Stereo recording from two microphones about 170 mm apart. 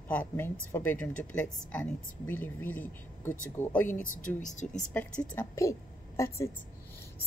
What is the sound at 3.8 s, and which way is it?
Speech, 50° left (ahead or behind).